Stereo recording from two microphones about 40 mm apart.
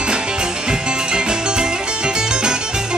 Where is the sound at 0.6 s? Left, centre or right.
Centre.